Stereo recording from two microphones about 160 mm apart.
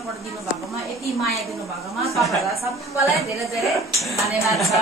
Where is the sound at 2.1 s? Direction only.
Centre (ahead or behind).